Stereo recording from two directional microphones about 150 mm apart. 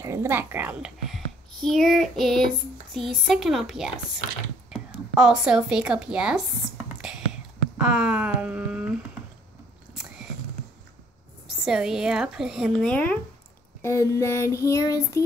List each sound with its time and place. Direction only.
0.0 s a woman's voice: 20° right (ahead or behind)
7.0 s whispering: 5° right (ahead or behind)
7.7 s a sound: 5° right (ahead or behind)
11.6 s speech: 5° right (ahead or behind)
13.8 s child singing: 20° left (ahead or behind)